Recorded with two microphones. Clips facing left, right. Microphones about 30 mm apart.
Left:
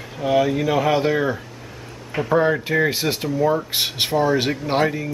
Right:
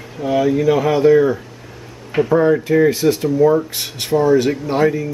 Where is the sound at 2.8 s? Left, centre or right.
Left.